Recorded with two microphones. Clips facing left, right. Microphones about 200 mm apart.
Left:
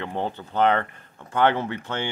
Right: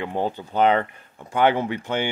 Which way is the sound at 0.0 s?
10° right (ahead or behind).